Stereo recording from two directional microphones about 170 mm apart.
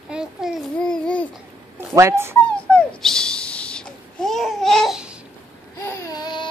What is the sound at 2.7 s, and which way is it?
Babbling, 5° left (ahead or behind).